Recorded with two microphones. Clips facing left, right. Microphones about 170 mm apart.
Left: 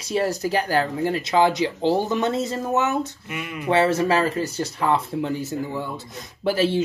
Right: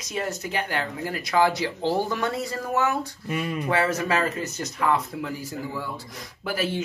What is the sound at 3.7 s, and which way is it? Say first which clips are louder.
Speech: left 6 dB; 25° left (ahead or behind).